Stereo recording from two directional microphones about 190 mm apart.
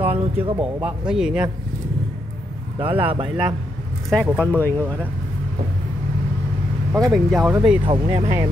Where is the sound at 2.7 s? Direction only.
30° right (ahead or behind).